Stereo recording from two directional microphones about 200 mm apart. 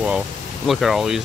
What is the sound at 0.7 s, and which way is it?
Speech, centre (ahead or behind).